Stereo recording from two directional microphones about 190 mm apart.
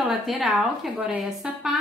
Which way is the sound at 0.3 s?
5° right (ahead or behind).